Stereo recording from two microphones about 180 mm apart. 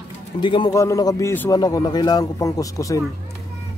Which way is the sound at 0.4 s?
25° left (ahead or behind).